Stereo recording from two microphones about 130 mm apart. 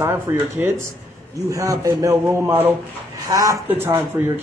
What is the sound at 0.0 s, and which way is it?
A man's voice, 15° right (ahead or behind).